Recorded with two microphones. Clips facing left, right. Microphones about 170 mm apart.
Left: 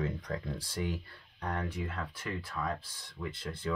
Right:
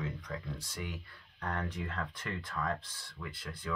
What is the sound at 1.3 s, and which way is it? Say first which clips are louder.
Speech: left 2 dB; 15° left (ahead or behind).